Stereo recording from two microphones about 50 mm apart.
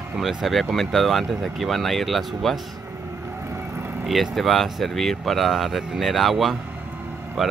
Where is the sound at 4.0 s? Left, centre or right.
Centre.